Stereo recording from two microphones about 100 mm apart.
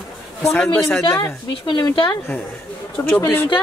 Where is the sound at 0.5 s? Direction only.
10° left (ahead or behind).